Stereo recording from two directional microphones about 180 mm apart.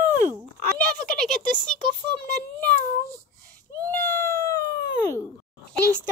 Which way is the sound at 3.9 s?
15° left (ahead or behind).